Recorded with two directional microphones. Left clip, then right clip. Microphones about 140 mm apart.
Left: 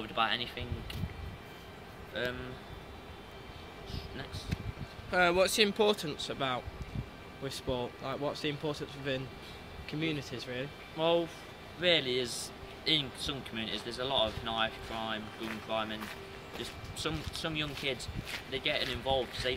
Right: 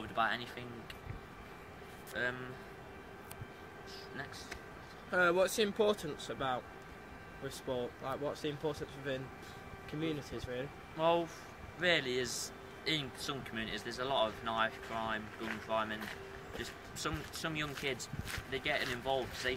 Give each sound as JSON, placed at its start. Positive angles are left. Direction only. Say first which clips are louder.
{"t": 0.1, "sound": "speech", "louder": "left 3 dB", "side_deg": -5}
{"t": 2.1, "sound": "speech", "louder": "left 1 dB", "side_deg": -5}
{"t": 5.1, "sound": "speech", "louder": "left 3 dB", "side_deg": 55}
{"t": 11.0, "sound": "speech", "louder": "left 2 dB", "side_deg": -5}